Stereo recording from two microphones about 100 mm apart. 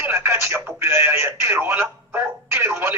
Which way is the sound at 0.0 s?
25° right (ahead or behind).